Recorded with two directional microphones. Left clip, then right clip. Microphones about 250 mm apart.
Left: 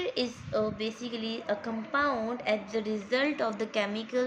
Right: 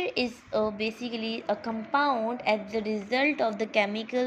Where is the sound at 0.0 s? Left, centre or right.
Centre.